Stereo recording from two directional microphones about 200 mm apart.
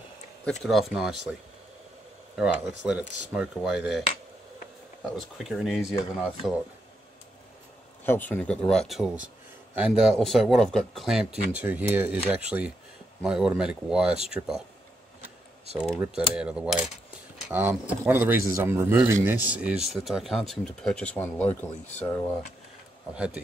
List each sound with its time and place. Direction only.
0.5 s a man's voice: centre (ahead or behind)
2.3 s a man's voice: 5° right (ahead or behind)
5.1 s a man's voice: centre (ahead or behind)
8.0 s a man's voice: 10° left (ahead or behind)
15.8 s a man's voice: 5° right (ahead or behind)
23.1 s a man's voice: 5° right (ahead or behind)